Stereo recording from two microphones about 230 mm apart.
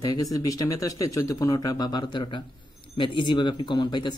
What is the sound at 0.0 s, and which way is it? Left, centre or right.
Speech, centre.